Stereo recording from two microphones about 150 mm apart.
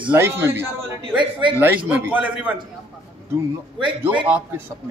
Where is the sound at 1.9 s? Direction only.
10° right (ahead or behind).